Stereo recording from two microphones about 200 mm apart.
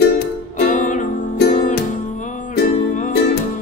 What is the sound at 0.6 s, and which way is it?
Music, 40° left (ahead or behind).